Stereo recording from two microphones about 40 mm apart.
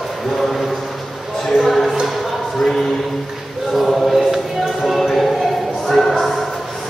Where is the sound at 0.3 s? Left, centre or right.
Centre.